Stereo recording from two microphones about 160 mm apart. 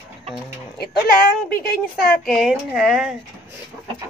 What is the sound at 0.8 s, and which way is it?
Speech, 70° left (ahead or behind).